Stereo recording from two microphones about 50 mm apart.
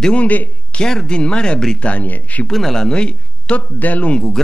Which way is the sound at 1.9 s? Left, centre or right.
Left.